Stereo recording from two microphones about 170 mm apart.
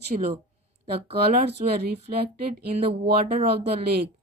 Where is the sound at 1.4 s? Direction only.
35° right (ahead or behind).